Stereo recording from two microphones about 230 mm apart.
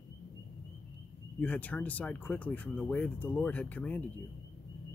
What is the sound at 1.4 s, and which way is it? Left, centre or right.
Speech, centre.